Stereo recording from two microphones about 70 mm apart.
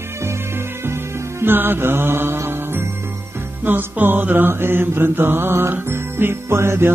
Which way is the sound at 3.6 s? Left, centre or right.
Right.